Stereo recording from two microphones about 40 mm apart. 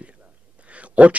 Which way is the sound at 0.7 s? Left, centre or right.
Right.